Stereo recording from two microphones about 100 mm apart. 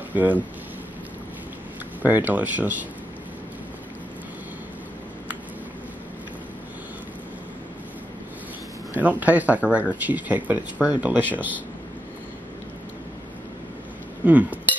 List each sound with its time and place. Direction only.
0.1 s speech: 15° right (ahead or behind)
2.0 s speech: 20° right (ahead or behind)
8.9 s speech: 15° right (ahead or behind)
14.2 s speech: 15° right (ahead or behind)